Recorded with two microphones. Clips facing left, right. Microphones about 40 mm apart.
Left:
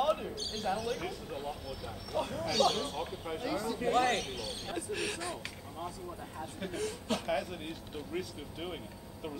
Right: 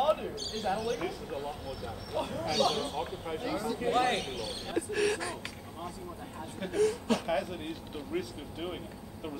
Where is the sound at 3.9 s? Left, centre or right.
Centre.